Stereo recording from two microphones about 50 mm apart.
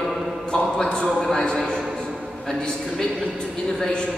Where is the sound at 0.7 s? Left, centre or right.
Centre.